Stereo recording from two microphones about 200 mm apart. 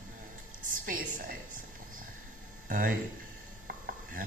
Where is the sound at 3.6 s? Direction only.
45° right (ahead or behind).